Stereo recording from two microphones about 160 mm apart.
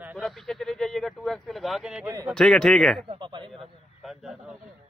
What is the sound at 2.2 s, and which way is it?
Speech, 5° left (ahead or behind).